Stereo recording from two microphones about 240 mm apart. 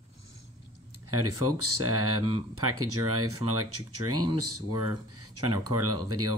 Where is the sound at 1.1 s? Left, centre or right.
Right.